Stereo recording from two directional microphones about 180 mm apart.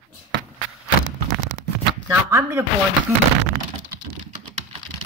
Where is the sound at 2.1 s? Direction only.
15° right (ahead or behind).